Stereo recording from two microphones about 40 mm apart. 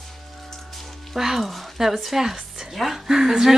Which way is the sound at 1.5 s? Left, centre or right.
Centre.